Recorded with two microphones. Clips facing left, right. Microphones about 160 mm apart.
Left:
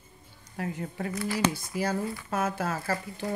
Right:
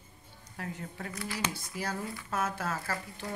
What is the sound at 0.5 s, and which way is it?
Speech, 10° left (ahead or behind).